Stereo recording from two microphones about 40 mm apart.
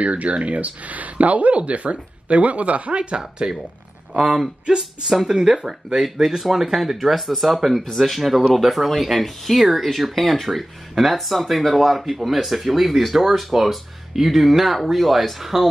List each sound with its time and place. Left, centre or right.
0.0 s speech: right
3.2 s speech: centre